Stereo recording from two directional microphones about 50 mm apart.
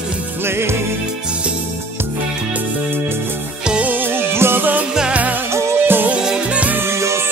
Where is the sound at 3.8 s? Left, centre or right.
Right.